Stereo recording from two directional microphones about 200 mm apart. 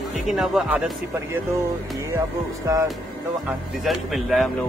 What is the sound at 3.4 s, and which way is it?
Speech, centre (ahead or behind).